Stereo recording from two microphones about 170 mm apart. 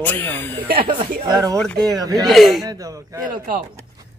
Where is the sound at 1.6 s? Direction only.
5° left (ahead or behind).